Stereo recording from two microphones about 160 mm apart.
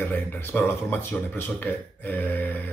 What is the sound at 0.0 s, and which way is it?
Speech, 15° left (ahead or behind).